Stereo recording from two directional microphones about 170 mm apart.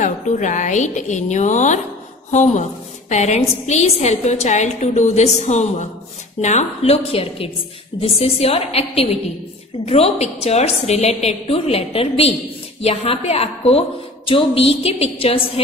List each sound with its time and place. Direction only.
0.0 s a woman's voice: 45° left (ahead or behind)
3.1 s a woman's voice: 40° left (ahead or behind)